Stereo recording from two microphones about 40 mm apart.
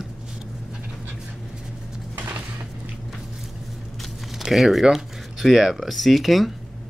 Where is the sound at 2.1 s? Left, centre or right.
Right.